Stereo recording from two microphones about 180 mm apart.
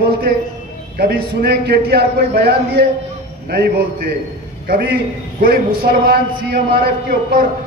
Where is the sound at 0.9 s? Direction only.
60° right (ahead or behind).